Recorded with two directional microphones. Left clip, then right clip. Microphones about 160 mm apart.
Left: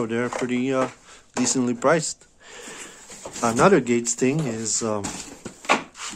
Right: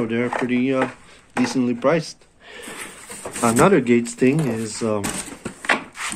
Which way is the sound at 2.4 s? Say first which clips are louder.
Right 5 dB; 10° left (ahead or behind).